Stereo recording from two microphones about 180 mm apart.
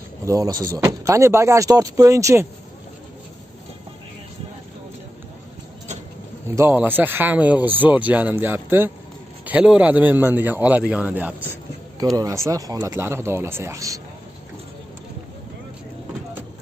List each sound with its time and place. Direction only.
0.2 s speech: 20° right (ahead or behind)
6.4 s speech: 15° right (ahead or behind)